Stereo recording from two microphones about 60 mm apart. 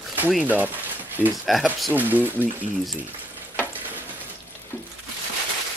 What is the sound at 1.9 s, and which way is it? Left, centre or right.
Speech, right.